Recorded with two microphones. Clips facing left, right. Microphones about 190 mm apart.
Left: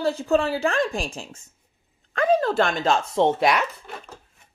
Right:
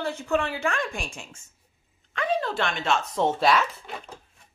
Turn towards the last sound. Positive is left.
turn(degrees=15)  # may be behind; listen again after turning